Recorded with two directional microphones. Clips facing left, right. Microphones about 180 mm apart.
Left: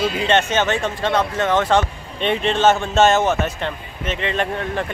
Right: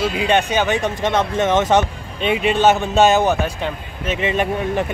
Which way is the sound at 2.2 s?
10° right (ahead or behind).